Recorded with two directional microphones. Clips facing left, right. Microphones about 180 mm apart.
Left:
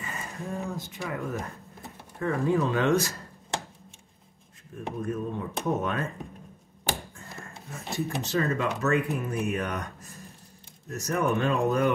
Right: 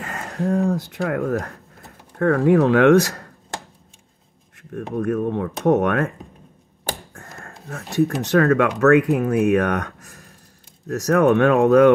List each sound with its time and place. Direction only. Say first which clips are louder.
0.0 s speech: right 11 dB; 75° right (ahead or behind)
4.7 s speech: right 9 dB; 65° right (ahead or behind)
7.3 s a sound: right 7 dB; 60° right (ahead or behind)
8.0 s speech: right 11 dB; 70° right (ahead or behind)
10.9 s speech: right 11 dB; 75° right (ahead or behind)